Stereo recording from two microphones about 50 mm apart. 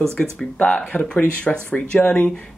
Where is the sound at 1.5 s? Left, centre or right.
Centre.